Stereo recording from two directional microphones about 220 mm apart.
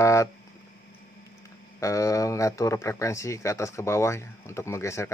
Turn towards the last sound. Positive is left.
turn(degrees=15)  # may be behind; listen again after turning